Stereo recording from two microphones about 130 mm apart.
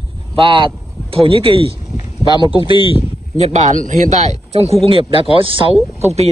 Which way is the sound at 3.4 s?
60° right (ahead or behind).